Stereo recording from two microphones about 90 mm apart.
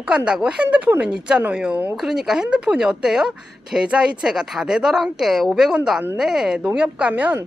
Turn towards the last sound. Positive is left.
turn(degrees=-15)  # may be behind; listen again after turning